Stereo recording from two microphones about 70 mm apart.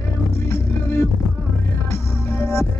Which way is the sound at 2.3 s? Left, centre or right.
Left.